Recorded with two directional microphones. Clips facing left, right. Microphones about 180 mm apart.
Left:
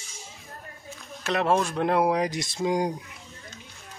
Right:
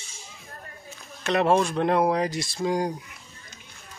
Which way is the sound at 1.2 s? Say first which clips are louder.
Right 3 dB; centre (ahead or behind).